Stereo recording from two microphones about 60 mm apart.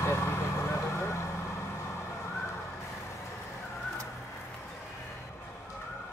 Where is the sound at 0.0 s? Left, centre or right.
Left.